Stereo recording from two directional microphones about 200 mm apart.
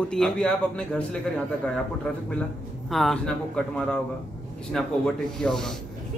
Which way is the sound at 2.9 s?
Centre (ahead or behind).